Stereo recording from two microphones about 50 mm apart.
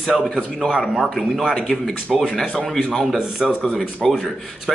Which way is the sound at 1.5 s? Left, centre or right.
Centre.